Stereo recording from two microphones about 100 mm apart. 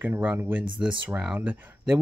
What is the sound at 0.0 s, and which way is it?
Speech, 20° right (ahead or behind).